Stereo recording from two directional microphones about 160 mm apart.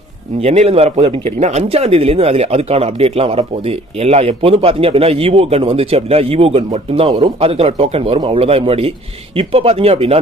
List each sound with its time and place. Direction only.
0.4 s speech: 40° right (ahead or behind)